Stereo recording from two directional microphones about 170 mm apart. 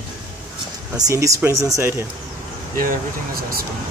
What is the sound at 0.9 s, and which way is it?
Speech, 20° right (ahead or behind).